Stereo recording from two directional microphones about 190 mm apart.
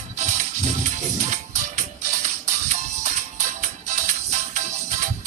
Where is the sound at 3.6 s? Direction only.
40° right (ahead or behind).